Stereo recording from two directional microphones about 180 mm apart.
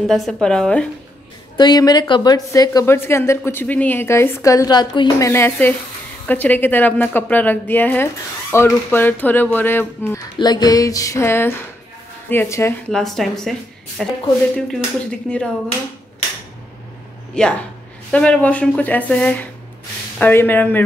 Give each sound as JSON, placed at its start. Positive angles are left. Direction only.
{"t": 0.0, "sound": "a woman's voice", "side_deg": 0}
{"t": 1.6, "sound": "a woman's voice", "side_deg": 20}
{"t": 10.4, "sound": "music", "side_deg": 20}
{"t": 12.3, "sound": "a woman's voice", "side_deg": 15}
{"t": 12.9, "sound": "a woman's voice", "side_deg": 0}
{"t": 17.3, "sound": "a woman's voice", "side_deg": 5}